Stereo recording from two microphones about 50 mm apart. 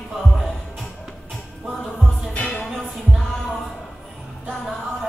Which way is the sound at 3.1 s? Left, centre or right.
Centre.